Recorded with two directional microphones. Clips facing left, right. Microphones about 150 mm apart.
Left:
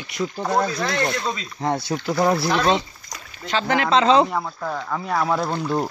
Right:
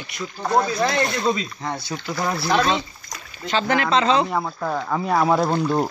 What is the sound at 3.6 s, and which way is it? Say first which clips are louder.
Speech: left 2 dB; 20° left (ahead or behind).